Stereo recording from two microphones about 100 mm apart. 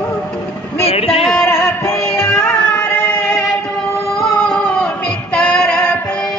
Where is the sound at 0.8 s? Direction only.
75° left (ahead or behind).